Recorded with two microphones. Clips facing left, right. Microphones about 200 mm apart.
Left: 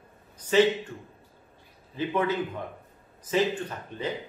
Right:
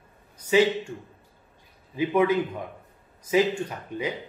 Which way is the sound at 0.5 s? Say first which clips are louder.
Right 1 dB; 10° right (ahead or behind).